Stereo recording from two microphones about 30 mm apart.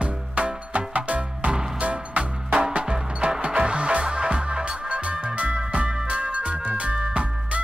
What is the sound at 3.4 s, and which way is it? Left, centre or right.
Music, right.